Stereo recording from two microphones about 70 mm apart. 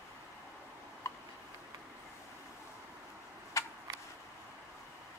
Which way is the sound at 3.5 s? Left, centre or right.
Left.